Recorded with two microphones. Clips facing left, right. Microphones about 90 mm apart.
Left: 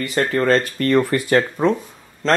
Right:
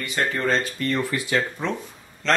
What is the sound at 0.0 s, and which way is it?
Speech, 35° left (ahead or behind).